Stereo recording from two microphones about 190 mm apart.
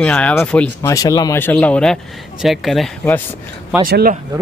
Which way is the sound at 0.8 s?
20° left (ahead or behind).